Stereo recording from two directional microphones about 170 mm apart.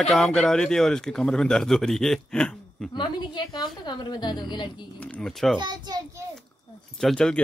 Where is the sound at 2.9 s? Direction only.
25° left (ahead or behind).